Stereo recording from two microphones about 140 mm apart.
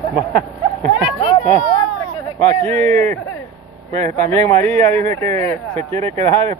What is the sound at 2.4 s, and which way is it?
Speech, 50° right (ahead or behind).